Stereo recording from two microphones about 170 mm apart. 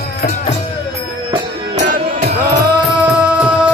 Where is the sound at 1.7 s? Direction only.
50° right (ahead or behind).